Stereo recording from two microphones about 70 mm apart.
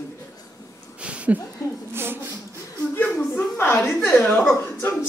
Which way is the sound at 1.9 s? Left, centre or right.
Right.